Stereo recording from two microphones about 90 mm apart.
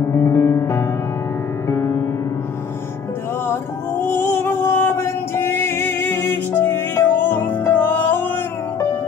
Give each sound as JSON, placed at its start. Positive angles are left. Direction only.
{"t": 0.1, "sound": "music", "side_deg": 30}
{"t": 3.4, "sound": "music", "side_deg": 25}